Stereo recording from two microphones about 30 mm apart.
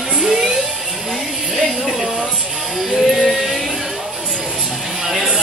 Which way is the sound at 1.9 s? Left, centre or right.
Centre.